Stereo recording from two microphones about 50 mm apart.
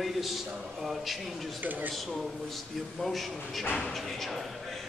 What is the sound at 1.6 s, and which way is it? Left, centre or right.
Speech, right.